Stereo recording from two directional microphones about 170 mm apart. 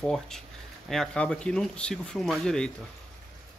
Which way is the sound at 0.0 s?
5° left (ahead or behind).